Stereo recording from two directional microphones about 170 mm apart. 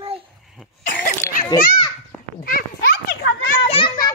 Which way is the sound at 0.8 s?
50° left (ahead or behind).